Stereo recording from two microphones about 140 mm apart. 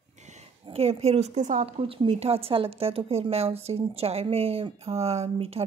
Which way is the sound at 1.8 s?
40° right (ahead or behind).